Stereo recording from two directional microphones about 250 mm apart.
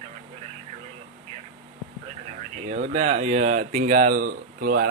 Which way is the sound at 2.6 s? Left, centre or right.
Right.